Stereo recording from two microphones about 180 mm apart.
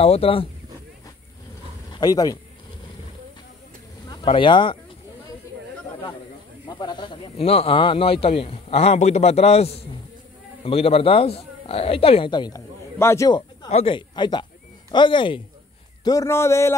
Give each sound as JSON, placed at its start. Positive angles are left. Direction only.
{"t": 0.0, "sound": "speech", "side_deg": 35}
{"t": 1.9, "sound": "speech", "side_deg": 20}
{"t": 4.1, "sound": "speech", "side_deg": 30}
{"t": 6.8, "sound": "speech", "side_deg": 25}
{"t": 13.7, "sound": "a man's voice", "side_deg": 30}